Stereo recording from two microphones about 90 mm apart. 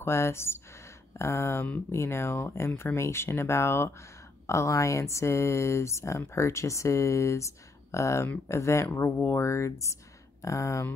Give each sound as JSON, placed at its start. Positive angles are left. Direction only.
{"t": 0.0, "sound": "speech", "side_deg": 30}
{"t": 8.8, "sound": "speech", "side_deg": 25}